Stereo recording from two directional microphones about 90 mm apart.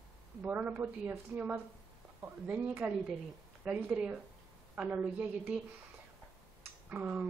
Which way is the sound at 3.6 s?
10° right (ahead or behind).